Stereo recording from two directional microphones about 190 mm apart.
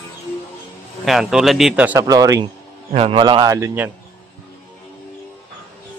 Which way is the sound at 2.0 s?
20° right (ahead or behind).